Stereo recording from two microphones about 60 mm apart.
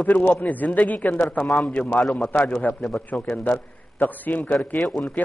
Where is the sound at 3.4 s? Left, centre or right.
Left.